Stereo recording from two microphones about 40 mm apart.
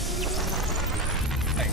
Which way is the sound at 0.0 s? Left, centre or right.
Centre.